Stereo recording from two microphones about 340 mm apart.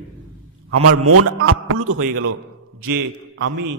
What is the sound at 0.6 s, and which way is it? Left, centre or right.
A man's voice, right.